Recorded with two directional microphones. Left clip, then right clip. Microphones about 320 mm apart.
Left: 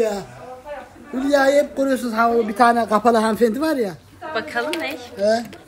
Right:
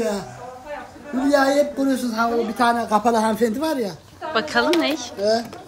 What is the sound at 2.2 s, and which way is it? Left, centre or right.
A woman's voice, centre.